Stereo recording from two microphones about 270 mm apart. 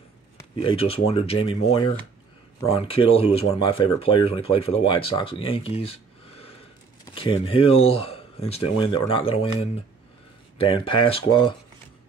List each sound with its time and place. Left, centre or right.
0.7 s speech: left
10.7 s speech: centre